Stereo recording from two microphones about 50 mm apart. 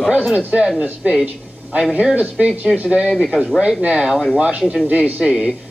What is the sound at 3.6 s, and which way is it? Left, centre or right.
Speech, centre.